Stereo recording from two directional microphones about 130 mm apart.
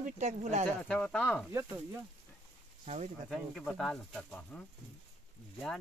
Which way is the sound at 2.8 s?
60° right (ahead or behind).